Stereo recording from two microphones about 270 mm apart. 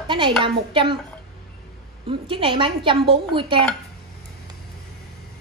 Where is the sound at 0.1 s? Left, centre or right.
Centre.